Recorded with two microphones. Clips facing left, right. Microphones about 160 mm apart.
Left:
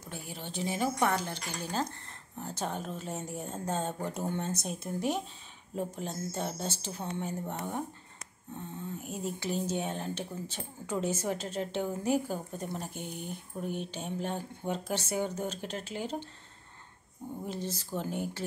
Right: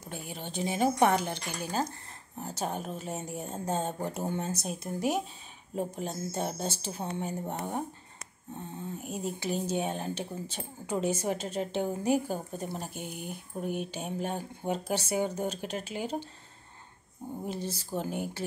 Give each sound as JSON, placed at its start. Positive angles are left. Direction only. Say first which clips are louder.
{"t": 0.1, "sound": "speech", "louder": "right 2 dB", "side_deg": -20}
{"t": 5.8, "sound": "speech", "louder": "right 2 dB", "side_deg": -15}
{"t": 9.0, "sound": "speech", "louder": "right 2 dB", "side_deg": -15}
{"t": 17.5, "sound": "speech", "louder": "right 1 dB", "side_deg": -10}